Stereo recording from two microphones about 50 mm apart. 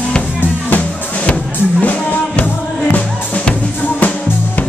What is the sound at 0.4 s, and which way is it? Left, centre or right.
Music, left.